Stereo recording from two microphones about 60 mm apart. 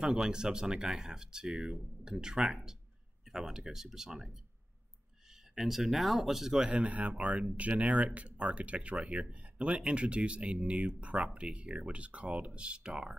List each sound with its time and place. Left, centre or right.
0.0 s speech: centre
6.6 s speech: right